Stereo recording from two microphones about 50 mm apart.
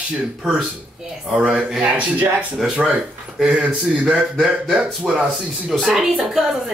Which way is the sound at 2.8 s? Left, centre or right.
Centre.